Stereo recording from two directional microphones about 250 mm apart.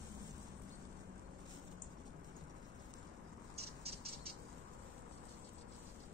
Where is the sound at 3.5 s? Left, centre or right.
Right.